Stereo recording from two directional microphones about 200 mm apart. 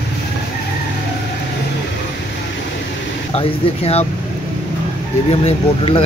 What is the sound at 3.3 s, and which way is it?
Speech, 30° left (ahead or behind).